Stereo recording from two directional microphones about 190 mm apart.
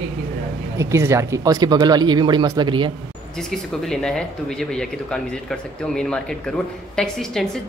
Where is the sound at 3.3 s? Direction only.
5° left (ahead or behind).